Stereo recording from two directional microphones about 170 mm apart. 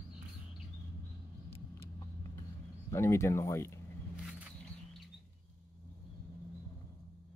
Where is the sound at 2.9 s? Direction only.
15° left (ahead or behind).